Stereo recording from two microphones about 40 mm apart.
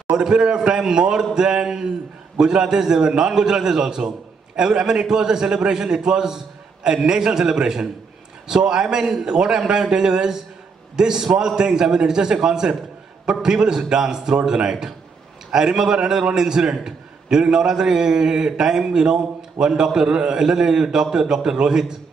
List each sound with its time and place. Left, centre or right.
0.1 s a man's voice: centre